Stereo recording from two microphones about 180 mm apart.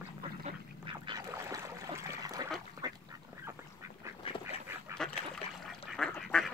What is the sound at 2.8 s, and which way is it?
Duck, 20° right (ahead or behind).